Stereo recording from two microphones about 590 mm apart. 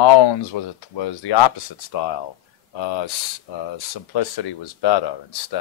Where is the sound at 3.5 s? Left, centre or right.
Left.